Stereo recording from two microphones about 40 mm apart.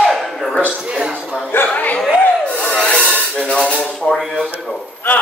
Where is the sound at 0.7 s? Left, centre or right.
Right.